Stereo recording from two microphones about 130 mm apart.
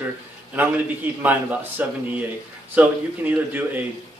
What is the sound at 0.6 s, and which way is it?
A man's voice, 15° right (ahead or behind).